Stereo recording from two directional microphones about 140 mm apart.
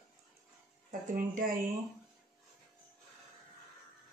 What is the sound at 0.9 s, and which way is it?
Speech, 70° right (ahead or behind).